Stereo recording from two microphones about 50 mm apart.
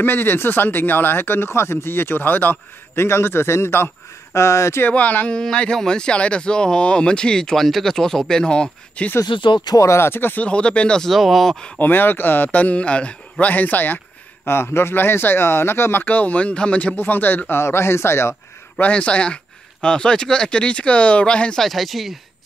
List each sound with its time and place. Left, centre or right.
0.0 s speech: left
3.0 s a man's voice: left
4.9 s speech: left
5.3 s speech: centre
9.8 s a man's voice: left
10.4 s speech: left
11.0 s speech: centre
11.8 s speech: left
16.9 s a man's voice: left
18.8 s speech: left
21.5 s speech: centre